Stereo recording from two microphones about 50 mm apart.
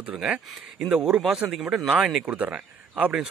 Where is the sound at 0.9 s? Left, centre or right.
Right.